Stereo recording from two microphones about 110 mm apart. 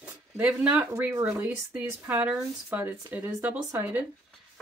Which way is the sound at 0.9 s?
25° right (ahead or behind).